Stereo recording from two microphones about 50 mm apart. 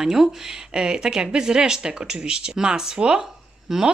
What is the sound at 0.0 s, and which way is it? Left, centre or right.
Speech, centre.